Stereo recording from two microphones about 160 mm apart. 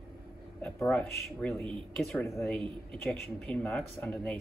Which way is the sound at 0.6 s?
10° left (ahead or behind).